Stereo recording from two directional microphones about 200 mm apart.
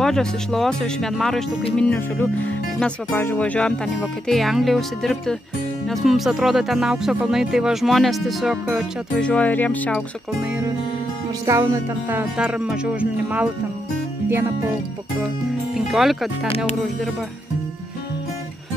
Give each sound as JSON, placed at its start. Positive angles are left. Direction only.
{"t": 0.0, "sound": "speech", "side_deg": 0}
{"t": 11.4, "sound": "speech", "side_deg": -15}
{"t": 15.7, "sound": "speech", "side_deg": 0}
{"t": 16.4, "sound": "speech", "side_deg": 30}